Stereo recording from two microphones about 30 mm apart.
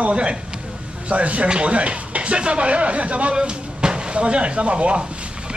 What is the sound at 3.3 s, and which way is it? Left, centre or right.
Speech, right.